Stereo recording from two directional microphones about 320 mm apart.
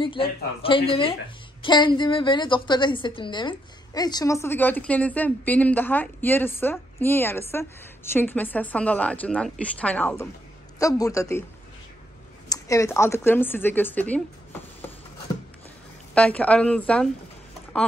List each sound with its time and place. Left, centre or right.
0.0 s a woman's voice: centre
12.4 s a woman's voice: centre
16.2 s speech: centre